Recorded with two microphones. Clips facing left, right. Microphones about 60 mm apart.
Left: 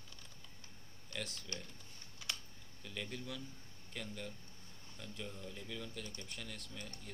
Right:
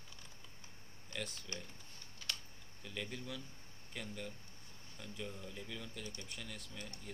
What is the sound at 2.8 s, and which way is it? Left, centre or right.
Speech, centre.